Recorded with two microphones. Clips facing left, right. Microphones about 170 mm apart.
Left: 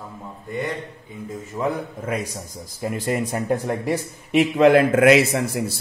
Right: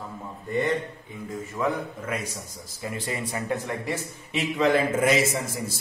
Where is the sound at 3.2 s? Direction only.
45° left (ahead or behind).